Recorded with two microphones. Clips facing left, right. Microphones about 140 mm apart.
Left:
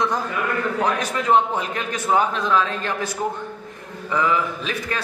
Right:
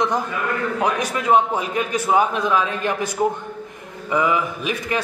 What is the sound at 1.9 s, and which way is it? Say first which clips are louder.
A man's voice: right 1 dB; 10° right (ahead or behind).